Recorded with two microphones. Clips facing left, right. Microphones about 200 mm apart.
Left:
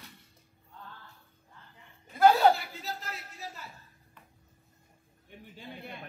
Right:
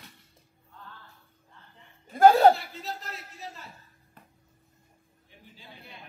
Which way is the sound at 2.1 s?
45° right (ahead or behind).